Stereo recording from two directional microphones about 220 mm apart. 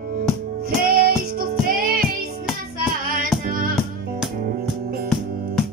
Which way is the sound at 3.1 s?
40° right (ahead or behind).